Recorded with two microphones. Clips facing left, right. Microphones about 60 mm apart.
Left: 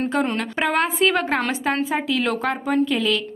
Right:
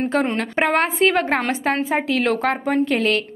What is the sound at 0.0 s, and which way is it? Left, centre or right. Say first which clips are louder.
A woman's voice: right 2 dB; right.